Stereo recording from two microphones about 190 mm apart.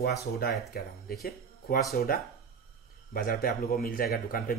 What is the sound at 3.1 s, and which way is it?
A man's voice, 50° left (ahead or behind).